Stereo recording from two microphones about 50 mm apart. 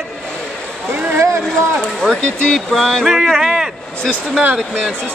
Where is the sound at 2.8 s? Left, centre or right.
Centre.